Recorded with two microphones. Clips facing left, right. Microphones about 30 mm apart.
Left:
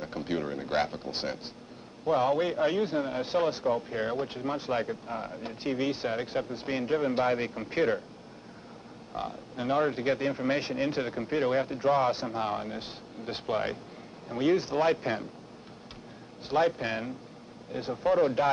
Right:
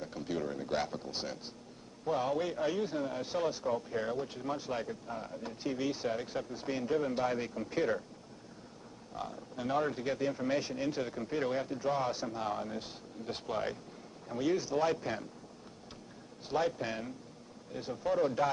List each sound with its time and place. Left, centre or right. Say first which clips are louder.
0.0 s a man's voice: left 5 dB; left
9.1 s a man's voice: left 5 dB; left
16.4 s a man's voice: left 6 dB; left